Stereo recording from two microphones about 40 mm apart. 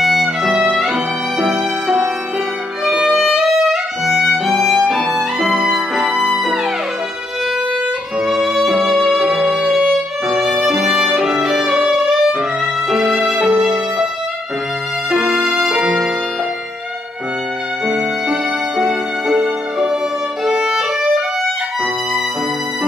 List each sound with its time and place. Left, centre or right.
0.0 s music: centre
3.4 s violin: centre
6.2 s music: centre
8.3 s music: centre
12.9 s violin: centre
15.0 s music: centre
15.6 s music: centre
18.8 s music: centre
20.4 s violin: centre